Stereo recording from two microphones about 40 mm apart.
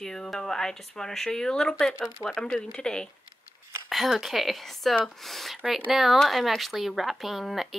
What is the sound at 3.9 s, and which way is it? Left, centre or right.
Speech, centre.